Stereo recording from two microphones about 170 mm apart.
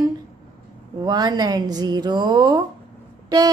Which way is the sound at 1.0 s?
25° right (ahead or behind).